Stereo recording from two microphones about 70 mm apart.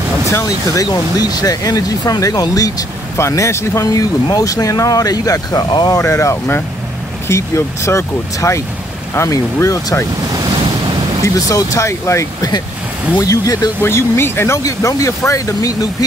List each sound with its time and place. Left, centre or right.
0.3 s speech: left
3.2 s speech: left
3.8 s speech: left
5.9 s speech: left
11.2 s speech: left
13.8 s speech: left